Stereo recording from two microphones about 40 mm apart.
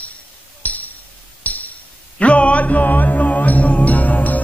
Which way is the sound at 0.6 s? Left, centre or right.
Left.